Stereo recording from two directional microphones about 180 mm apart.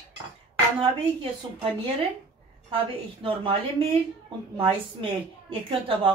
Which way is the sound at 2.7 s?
30° right (ahead or behind).